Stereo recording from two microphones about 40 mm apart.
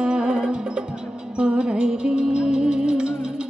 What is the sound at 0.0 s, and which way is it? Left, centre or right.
Music, right.